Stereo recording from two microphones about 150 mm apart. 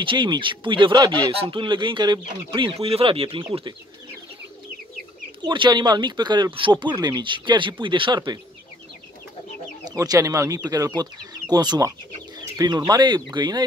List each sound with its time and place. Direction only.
0.0 s speech: 30° right (ahead or behind)
5.4 s speech: 30° right (ahead or behind)
9.8 s speech: 25° right (ahead or behind)